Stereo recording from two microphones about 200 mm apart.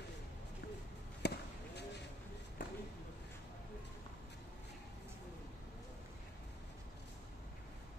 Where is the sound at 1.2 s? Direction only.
55° left (ahead or behind).